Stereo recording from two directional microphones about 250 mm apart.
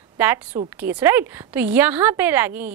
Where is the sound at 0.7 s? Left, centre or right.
Centre.